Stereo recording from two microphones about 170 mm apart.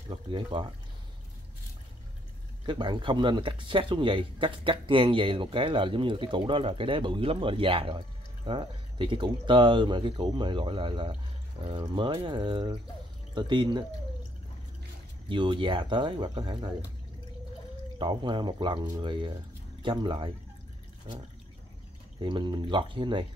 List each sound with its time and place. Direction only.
0.1 s speech: 30° right (ahead or behind)
2.6 s speech: 30° right (ahead or behind)
15.2 s speech: 30° right (ahead or behind)
17.9 s speech: 30° right (ahead or behind)
22.2 s speech: 25° right (ahead or behind)